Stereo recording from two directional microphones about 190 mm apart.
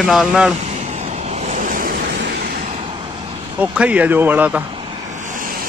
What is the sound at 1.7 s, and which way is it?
Waves, 45° right (ahead or behind).